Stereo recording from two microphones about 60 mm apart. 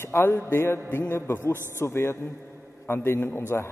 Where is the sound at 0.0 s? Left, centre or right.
Left.